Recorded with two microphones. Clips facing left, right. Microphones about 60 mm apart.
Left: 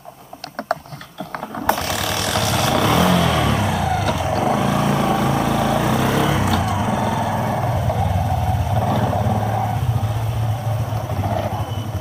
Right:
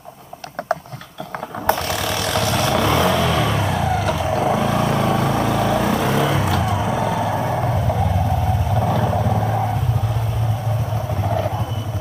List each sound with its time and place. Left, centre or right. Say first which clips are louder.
1.7 s vehicle: right 1 dB; centre
8.7 s wild animals: even; centre
11.2 s vehicle: right 1 dB; centre